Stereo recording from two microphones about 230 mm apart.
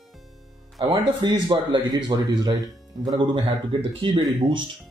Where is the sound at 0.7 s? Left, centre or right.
Centre.